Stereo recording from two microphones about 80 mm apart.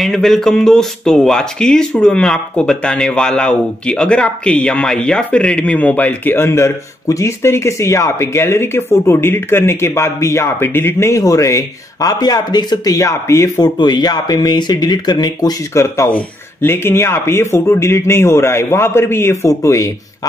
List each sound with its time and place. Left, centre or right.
0.0 s speech: centre; by 13.5 s left
13.6 s speech: left
15.7 s speech: left